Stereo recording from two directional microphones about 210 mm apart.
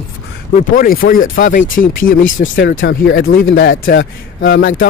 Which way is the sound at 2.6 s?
60° left (ahead or behind).